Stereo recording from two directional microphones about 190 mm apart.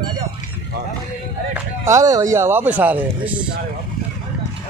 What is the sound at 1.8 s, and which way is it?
Speech, 15° right (ahead or behind).